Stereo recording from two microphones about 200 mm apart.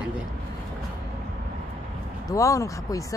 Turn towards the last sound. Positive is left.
turn(degrees=15)  # may be behind; listen again after turning